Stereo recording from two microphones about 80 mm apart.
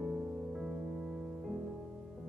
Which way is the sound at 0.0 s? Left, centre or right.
Centre.